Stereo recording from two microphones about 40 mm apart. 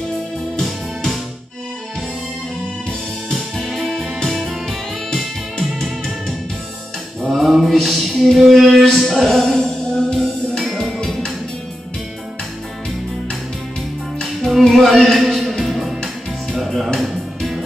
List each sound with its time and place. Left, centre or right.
0.7 s music: centre
3.7 s music: centre
4.6 s music: centre
7.2 s a sound: centre
9.2 s music: centre
9.6 s music: left
10.1 s music: centre
14.4 s music: centre